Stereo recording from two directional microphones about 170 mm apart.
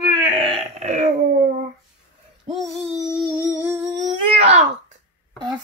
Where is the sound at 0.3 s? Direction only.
30° right (ahead or behind).